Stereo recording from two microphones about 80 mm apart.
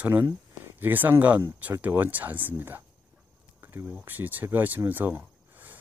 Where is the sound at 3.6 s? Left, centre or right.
Right.